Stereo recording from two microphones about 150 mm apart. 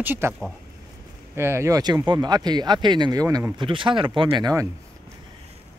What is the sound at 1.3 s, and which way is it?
Speech, 15° right (ahead or behind).